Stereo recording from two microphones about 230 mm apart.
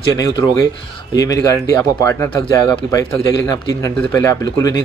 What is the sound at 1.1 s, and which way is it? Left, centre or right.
A man's voice, centre.